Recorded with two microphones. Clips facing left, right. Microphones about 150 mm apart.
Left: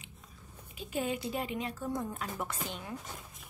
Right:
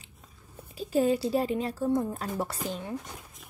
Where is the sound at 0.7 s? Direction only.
35° right (ahead or behind).